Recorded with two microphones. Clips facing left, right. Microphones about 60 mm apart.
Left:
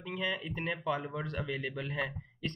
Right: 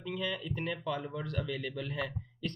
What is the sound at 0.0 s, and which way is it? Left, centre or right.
Speech, left.